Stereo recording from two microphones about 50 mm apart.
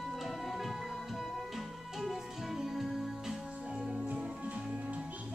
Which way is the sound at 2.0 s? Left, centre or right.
Centre.